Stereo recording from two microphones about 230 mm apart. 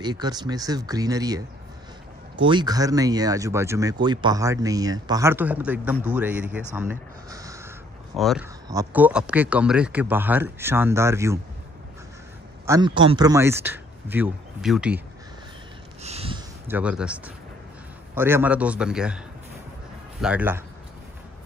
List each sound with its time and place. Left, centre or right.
0.0 s a man's voice: centre
8.2 s a man's voice: centre
8.6 s speech: centre
12.6 s speech: centre
16.0 s a sound: right
16.6 s a man's voice: centre